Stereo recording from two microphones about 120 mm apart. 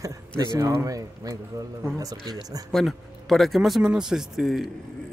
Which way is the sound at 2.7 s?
Centre (ahead or behind).